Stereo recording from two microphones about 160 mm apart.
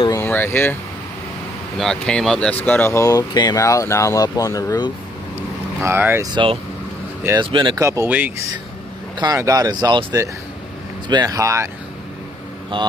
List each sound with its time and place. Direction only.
0.2 s speech: 10° left (ahead or behind)
1.8 s speech: 5° left (ahead or behind); by 4.9 s 25° left (ahead or behind)
5.8 s speech: 15° right (ahead or behind)
6.3 s speech: 35° right (ahead or behind)
7.8 s speech: 15° right (ahead or behind)
12.7 s speech: 30° right (ahead or behind)